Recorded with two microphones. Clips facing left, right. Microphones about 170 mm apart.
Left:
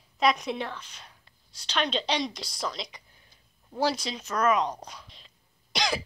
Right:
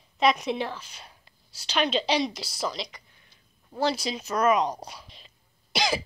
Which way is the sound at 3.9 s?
10° right (ahead or behind).